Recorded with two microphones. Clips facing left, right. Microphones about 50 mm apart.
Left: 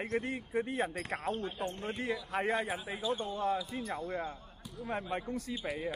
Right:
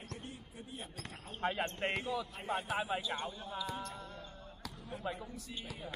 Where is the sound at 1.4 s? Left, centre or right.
Right.